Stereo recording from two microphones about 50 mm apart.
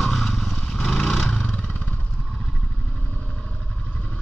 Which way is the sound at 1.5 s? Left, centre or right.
Left.